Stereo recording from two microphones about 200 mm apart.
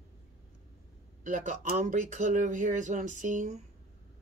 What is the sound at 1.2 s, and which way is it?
Speech, 40° right (ahead or behind).